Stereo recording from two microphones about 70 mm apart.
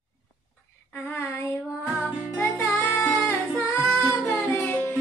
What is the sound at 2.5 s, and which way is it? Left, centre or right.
Music, left.